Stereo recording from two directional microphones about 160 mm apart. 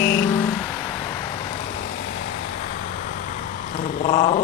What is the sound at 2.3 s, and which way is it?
Vehicle, 75° left (ahead or behind).